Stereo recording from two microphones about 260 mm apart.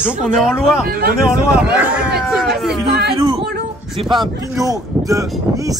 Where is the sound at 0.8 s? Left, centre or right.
Right.